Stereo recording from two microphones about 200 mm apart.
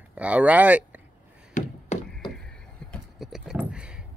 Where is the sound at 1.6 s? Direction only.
40° left (ahead or behind).